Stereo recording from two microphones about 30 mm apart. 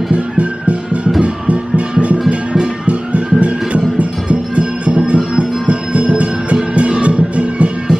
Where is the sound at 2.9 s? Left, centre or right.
Right.